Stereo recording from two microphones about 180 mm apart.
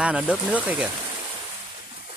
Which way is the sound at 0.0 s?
5° right (ahead or behind).